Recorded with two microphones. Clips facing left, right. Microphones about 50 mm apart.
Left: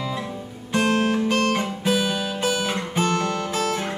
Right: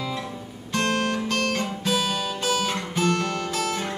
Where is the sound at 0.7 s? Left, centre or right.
Centre.